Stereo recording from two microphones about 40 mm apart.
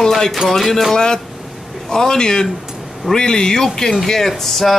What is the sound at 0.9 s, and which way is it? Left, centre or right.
Speech, centre.